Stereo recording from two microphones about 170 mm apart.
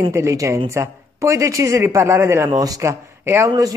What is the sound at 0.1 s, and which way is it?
A woman's voice, 15° right (ahead or behind).